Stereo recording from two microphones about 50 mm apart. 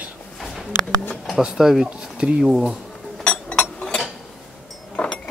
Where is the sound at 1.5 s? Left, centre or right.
Centre.